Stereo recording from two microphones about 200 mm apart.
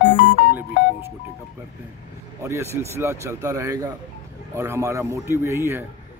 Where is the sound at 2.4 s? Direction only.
15° right (ahead or behind).